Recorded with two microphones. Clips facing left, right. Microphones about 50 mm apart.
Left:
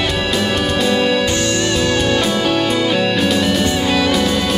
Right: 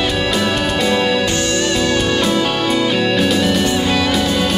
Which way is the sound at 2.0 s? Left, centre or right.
Centre.